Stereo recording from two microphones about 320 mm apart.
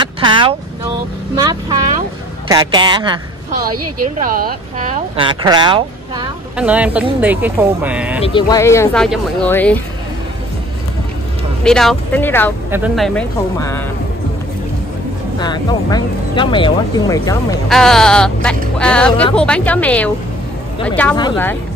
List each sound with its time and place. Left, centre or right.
0.0 s speech: centre
3.6 s a woman's voice: right
4.2 s speech: right; by 8.2 s centre
8.2 s speech: centre
11.6 s speech: centre
15.3 s speech: centre